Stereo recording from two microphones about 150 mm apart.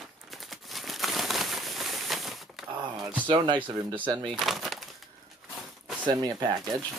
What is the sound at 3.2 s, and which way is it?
Speech, 35° right (ahead or behind).